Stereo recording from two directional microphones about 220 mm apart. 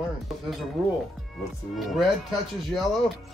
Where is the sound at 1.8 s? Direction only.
Centre (ahead or behind).